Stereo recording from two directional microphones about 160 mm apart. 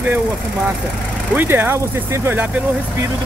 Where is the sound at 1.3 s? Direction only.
10° right (ahead or behind).